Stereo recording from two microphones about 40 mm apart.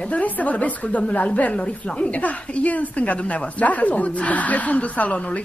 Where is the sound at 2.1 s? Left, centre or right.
Left.